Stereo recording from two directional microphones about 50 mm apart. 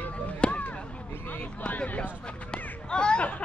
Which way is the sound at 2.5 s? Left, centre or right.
Centre.